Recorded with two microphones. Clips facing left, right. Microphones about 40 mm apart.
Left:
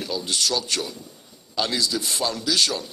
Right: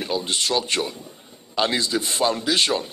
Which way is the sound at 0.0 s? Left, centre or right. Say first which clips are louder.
Right 2 dB; right.